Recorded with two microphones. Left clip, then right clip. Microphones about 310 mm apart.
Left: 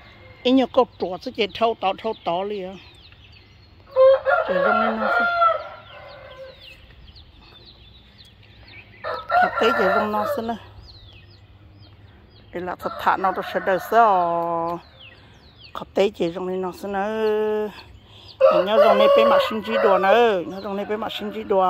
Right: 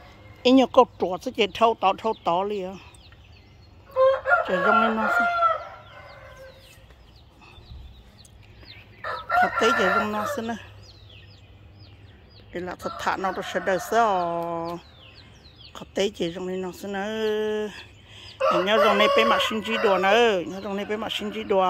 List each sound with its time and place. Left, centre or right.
0.4 s speech: centre
3.9 s chicken: left
8.6 s chicken: left
9.7 s speech: left
10.3 s speech: centre
12.5 s speech: centre
19.6 s speech: left
19.9 s speech: centre